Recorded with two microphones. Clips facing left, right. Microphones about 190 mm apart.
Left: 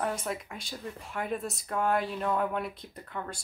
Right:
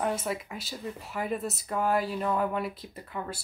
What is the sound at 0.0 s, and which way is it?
Speech, 5° right (ahead or behind).